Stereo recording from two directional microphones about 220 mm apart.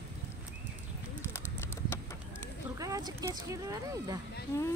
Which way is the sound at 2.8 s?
15° right (ahead or behind).